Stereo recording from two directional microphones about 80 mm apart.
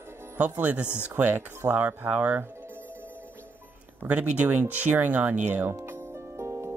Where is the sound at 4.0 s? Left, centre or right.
Centre.